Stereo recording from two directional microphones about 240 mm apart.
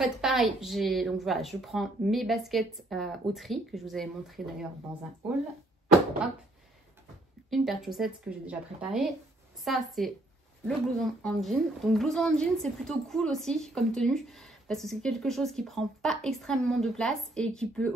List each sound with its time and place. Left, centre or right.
0.0 s a woman's voice: centre
5.2 s a woman's voice: centre
7.4 s a woman's voice: centre